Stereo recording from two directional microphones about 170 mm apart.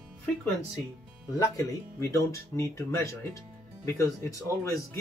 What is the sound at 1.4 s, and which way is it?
Speech, 20° left (ahead or behind).